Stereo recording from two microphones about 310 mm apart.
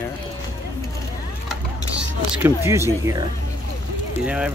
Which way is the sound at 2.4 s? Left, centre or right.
Centre.